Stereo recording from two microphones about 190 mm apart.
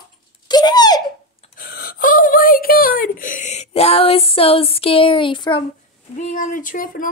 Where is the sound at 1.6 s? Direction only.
50° left (ahead or behind); by 5.6 s 25° left (ahead or behind).